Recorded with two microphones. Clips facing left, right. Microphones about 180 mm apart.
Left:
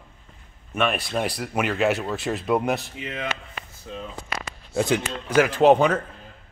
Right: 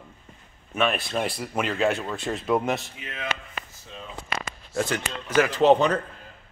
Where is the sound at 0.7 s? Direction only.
Centre (ahead or behind).